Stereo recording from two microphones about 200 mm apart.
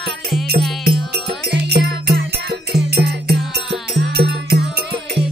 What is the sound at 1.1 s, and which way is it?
Music, 55° right (ahead or behind).